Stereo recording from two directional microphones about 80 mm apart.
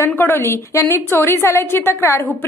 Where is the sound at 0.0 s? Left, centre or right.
Left.